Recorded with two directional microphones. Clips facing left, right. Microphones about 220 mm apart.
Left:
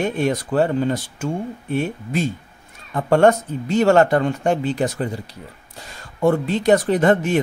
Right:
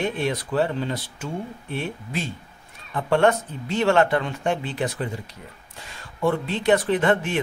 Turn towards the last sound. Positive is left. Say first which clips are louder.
# left 4 dB
turn(degrees=40)  # may be behind; listen again after turning